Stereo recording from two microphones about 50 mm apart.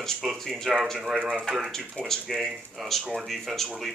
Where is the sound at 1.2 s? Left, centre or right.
Right.